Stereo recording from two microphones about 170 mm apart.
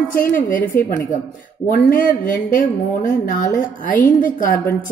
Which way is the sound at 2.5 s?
55° left (ahead or behind).